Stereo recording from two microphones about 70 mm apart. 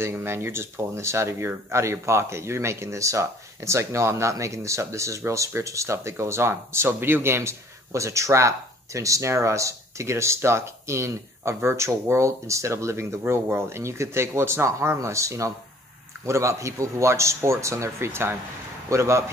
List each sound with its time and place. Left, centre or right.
0.0 s speech: right
13.2 s speech: right